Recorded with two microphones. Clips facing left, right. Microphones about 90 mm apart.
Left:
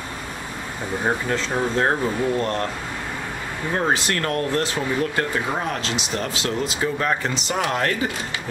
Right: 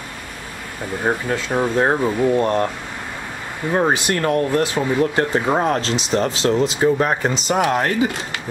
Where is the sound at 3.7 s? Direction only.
20° right (ahead or behind).